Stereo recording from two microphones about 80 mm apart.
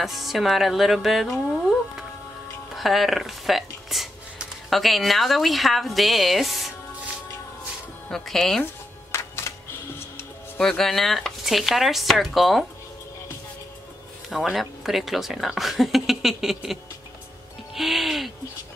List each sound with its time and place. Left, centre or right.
0.0 s speech: centre
8.1 s speech: centre
9.1 s music: left
10.6 s speech: centre
14.3 s speech: centre
17.7 s music: centre